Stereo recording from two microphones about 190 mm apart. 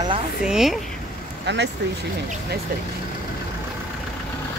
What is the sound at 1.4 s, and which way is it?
Speech, 65° right (ahead or behind).